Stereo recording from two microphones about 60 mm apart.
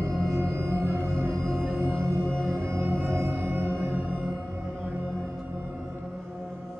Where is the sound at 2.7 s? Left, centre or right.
Right.